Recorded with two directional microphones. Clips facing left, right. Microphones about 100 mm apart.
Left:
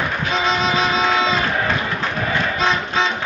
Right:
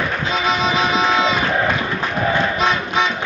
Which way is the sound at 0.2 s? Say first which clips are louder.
Even; 15° right (ahead or behind).